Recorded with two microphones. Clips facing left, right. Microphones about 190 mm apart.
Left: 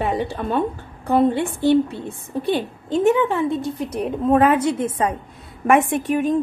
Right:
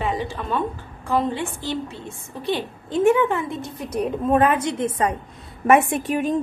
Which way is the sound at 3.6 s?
25° left (ahead or behind).